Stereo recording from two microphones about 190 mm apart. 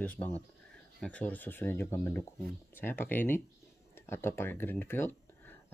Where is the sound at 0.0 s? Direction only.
10° left (ahead or behind).